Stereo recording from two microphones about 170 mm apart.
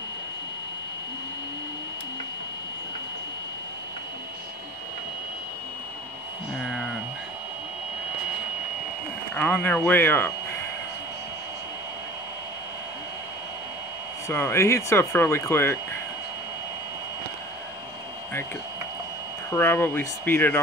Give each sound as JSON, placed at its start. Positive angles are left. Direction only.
{"t": 6.6, "sound": "a sound", "side_deg": 0}
{"t": 9.3, "sound": "speech", "side_deg": 10}
{"t": 14.2, "sound": "speech", "side_deg": 15}
{"t": 19.5, "sound": "speech", "side_deg": 10}